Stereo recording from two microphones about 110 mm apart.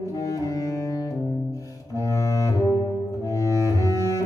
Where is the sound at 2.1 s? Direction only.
30° left (ahead or behind).